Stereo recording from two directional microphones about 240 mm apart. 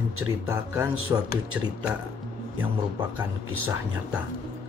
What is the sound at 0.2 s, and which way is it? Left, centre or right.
Speech, centre.